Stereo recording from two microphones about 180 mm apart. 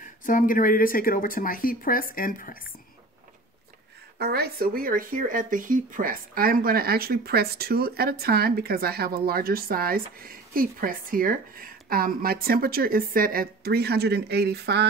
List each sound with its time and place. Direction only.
0.0 s speech: 45° left (ahead or behind)
4.2 s speech: 60° right (ahead or behind)